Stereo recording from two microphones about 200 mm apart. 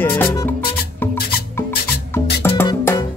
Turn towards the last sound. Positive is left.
turn(degrees=15)  # may be behind; listen again after turning